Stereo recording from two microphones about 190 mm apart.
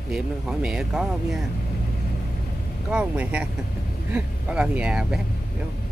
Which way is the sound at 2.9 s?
5° right (ahead or behind).